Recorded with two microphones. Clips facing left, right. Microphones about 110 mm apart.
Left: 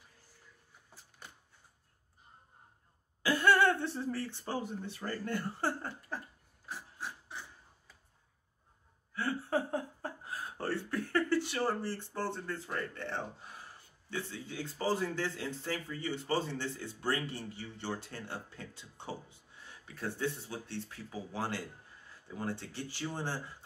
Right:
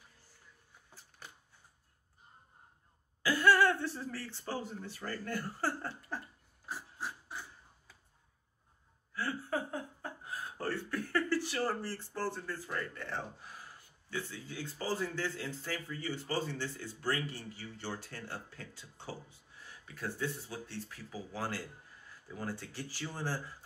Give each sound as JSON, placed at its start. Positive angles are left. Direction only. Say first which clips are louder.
{"t": 3.2, "sound": "speech", "louder": "even", "side_deg": 25}
{"t": 9.1, "sound": "laughter", "louder": "left 3 dB", "side_deg": 25}
{"t": 10.6, "sound": "speech", "louder": "left 2 dB", "side_deg": 25}
{"t": 14.2, "sound": "speech", "louder": "left 2 dB", "side_deg": 25}